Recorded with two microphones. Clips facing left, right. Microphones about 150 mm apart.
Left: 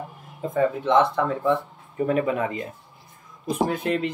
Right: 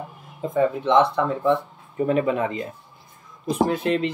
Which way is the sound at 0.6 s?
25° right (ahead or behind).